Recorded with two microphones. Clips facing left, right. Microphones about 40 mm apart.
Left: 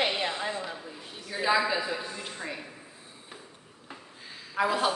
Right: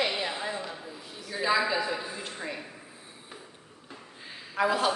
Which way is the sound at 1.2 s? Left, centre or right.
Centre.